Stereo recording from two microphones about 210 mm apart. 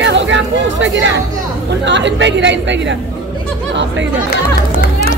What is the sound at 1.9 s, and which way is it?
A woman's voice, 60° right (ahead or behind).